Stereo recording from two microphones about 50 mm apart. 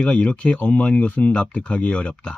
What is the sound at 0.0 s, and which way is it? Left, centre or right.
Speech, left.